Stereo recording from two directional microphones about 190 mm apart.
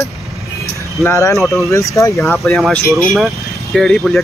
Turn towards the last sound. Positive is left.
turn(degrees=0)  # may be behind; listen again after turning